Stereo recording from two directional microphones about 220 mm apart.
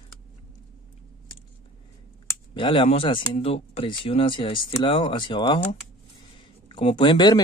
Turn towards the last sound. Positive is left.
turn(degrees=20)  # may be behind; listen again after turning